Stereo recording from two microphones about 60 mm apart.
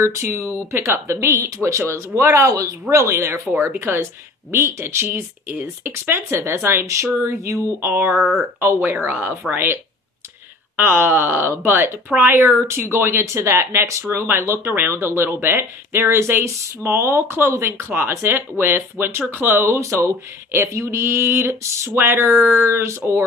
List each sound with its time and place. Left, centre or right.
0.0 s speech: right
2.9 s speech: right
3.5 s speech: right
5.5 s speech: right
6.3 s speech: right
7.8 s speech: right
9.0 s speech: right
10.8 s speech: right
12.6 s speech: right
19.8 s speech: right